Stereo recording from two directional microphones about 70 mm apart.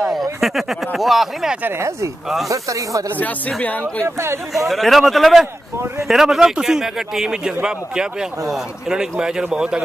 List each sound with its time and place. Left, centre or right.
0.4 s speech: centre
1.8 s speech: right
4.6 s a man's voice: centre